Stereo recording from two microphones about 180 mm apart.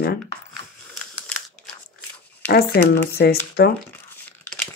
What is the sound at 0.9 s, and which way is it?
Crushing, 5° left (ahead or behind).